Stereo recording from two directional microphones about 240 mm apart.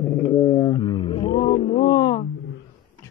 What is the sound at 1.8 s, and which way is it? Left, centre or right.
Speech, centre.